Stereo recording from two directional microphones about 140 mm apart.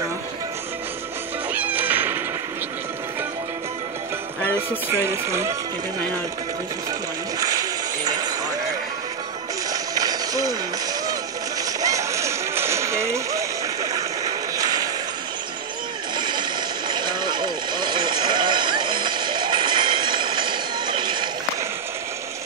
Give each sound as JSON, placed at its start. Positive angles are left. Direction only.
{"t": 1.5, "sound": "music", "side_deg": -10}
{"t": 4.8, "sound": "speech", "side_deg": -20}
{"t": 7.3, "sound": "music", "side_deg": -25}
{"t": 9.7, "sound": "a sound", "side_deg": -25}
{"t": 11.8, "sound": "music", "side_deg": -20}
{"t": 16.2, "sound": "vehicle", "side_deg": -35}